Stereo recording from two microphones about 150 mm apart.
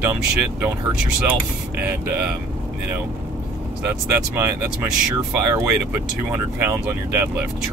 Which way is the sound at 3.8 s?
15° right (ahead or behind).